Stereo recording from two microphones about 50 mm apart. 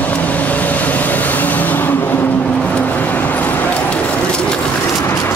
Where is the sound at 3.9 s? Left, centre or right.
Left.